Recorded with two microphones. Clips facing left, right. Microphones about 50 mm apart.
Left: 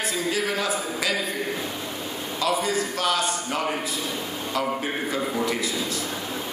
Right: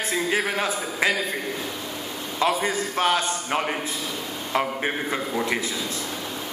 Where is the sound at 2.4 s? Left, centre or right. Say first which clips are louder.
Right 1 dB; right.